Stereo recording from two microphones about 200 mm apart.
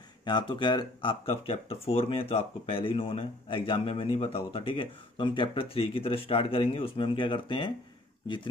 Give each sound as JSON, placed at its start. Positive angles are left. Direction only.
{"t": 0.2, "sound": "speech", "side_deg": 25}